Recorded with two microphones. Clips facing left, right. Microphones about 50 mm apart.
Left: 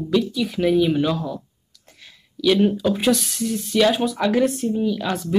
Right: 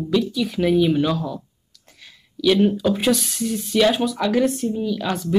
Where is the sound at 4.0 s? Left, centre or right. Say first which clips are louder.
Even; centre.